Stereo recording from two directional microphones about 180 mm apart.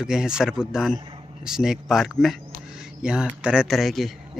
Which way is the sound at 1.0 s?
25° right (ahead or behind).